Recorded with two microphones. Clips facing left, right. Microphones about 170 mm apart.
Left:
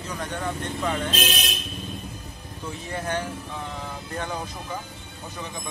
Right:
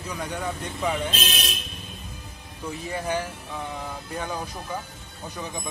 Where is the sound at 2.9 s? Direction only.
5° right (ahead or behind).